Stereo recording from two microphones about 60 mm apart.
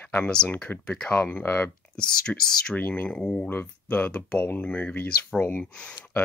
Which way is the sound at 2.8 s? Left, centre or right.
Left.